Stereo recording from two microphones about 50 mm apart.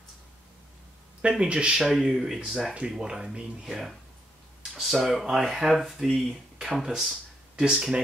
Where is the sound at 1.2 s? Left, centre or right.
Centre.